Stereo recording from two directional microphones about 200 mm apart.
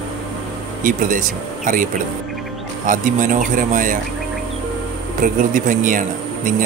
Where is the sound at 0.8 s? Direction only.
40° right (ahead or behind).